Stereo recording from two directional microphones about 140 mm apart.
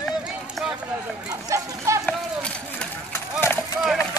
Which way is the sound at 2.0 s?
5° left (ahead or behind).